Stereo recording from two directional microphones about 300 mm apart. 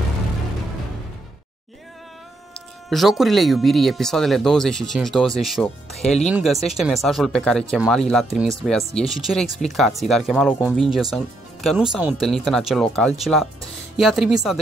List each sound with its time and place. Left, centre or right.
2.5 s speech: centre
5.9 s speech: left
6.2 s speech: centre